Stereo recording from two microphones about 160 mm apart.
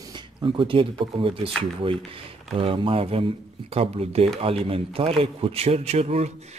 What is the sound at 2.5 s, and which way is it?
A man's voice, 35° right (ahead or behind).